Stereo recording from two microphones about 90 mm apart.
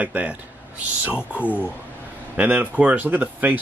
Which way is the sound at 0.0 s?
15° right (ahead or behind).